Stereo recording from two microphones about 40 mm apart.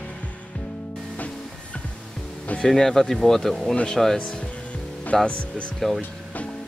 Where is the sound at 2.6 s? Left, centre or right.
Centre.